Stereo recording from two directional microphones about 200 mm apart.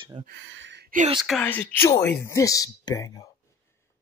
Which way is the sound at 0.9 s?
45° right (ahead or behind).